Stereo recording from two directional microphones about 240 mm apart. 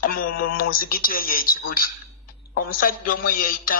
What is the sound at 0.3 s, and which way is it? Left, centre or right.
Speech, left.